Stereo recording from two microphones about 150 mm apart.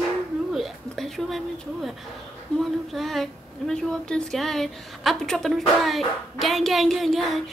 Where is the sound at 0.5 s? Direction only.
Centre (ahead or behind).